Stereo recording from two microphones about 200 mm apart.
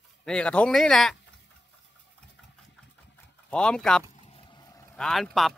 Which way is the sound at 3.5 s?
5° left (ahead or behind).